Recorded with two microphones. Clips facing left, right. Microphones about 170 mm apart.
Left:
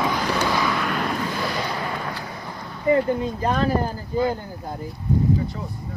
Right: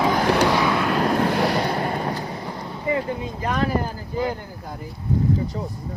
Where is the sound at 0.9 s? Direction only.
35° right (ahead or behind).